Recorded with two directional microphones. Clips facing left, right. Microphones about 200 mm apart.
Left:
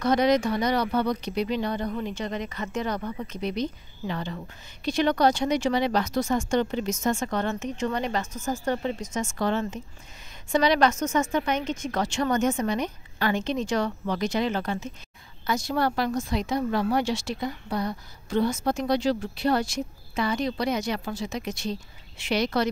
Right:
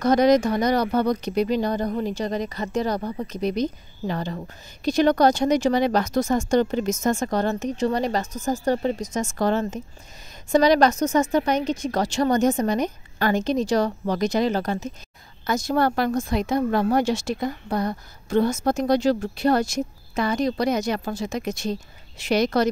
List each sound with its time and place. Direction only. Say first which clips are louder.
0.0 s speech: right 4 dB; 40° right (ahead or behind)